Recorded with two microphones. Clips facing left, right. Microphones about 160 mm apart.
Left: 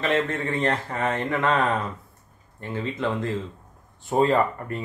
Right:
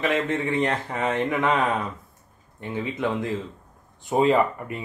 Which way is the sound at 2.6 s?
15° right (ahead or behind).